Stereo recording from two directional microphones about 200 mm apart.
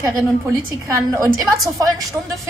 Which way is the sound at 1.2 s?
20° right (ahead or behind).